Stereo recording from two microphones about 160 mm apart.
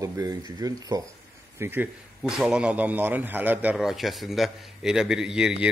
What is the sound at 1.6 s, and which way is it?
A man's voice, 10° right (ahead or behind).